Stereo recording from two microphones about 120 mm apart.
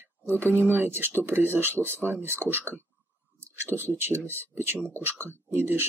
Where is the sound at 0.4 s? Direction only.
20° right (ahead or behind).